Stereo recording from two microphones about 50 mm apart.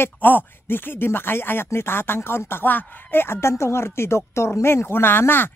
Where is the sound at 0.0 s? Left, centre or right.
Left.